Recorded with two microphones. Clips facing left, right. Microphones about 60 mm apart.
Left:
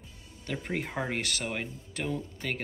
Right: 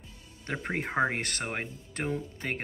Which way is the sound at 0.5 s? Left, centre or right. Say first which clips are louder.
Right 1 dB; right.